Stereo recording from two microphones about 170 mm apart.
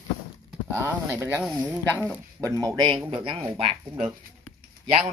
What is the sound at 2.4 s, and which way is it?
Speech, 20° right (ahead or behind).